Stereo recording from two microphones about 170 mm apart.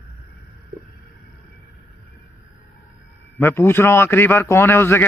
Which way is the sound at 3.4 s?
15° left (ahead or behind).